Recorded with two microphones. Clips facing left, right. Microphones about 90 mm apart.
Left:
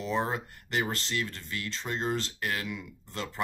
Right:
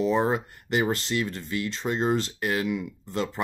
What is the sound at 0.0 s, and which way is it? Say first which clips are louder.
Speech: right 7 dB; 20° right (ahead or behind).